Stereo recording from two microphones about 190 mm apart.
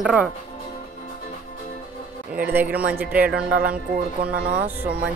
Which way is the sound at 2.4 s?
10° right (ahead or behind).